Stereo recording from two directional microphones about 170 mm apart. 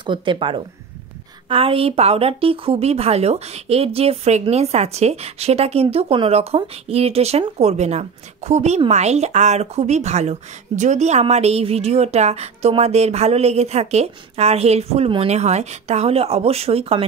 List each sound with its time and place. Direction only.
0.0 s a woman's voice: 30° right (ahead or behind)